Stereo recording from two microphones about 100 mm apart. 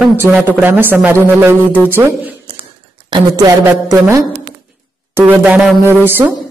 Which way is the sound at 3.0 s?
45° right (ahead or behind).